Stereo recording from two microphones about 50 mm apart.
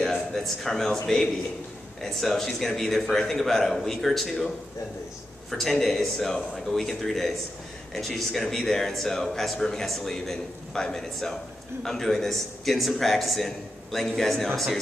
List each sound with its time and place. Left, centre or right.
0.0 s a man's voice: centre
5.5 s a man's voice: centre